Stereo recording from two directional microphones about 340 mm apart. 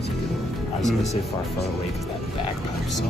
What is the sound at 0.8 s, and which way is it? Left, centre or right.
Speech, left.